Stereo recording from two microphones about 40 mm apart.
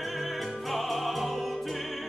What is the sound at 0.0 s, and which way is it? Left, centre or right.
Music, centre.